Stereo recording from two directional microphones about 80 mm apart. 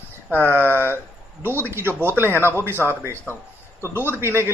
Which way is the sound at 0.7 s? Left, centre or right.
Right.